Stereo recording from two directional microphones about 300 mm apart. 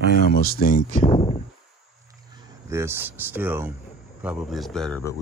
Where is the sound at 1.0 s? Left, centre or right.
Centre.